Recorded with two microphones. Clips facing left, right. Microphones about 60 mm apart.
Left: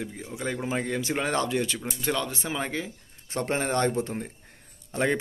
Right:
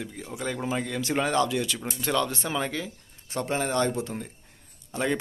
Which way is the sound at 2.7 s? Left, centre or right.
Left.